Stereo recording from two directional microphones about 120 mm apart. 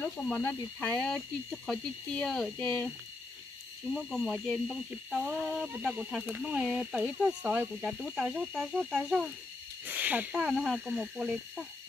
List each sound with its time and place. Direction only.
0.0 s speech: 15° left (ahead or behind)
1.0 s speech: 5° left (ahead or behind)
3.9 s speech: centre (ahead or behind)
5.7 s speech: 10° right (ahead or behind)
10.3 s speech: centre (ahead or behind)